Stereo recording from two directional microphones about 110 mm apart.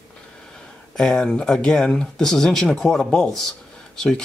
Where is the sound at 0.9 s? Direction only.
5° left (ahead or behind).